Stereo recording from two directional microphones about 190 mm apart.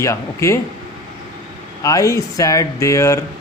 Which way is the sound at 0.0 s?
15° left (ahead or behind).